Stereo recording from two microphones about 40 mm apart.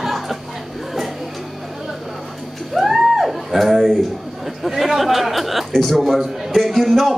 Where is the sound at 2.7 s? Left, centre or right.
Centre.